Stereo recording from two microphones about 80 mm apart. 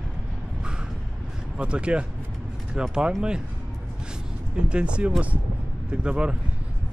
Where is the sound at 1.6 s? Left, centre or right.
Centre.